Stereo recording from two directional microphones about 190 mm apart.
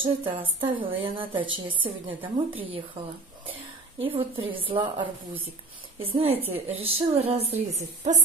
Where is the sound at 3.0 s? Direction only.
30° right (ahead or behind).